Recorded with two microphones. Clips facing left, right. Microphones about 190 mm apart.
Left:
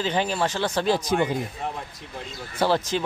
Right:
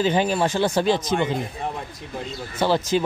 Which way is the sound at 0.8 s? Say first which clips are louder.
Right 1 dB; 5° left (ahead or behind).